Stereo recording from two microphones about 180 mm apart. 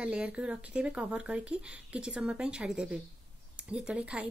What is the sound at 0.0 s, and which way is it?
A woman's voice, 5° right (ahead or behind).